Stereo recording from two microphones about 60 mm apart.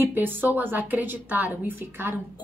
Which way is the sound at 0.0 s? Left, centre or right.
Right.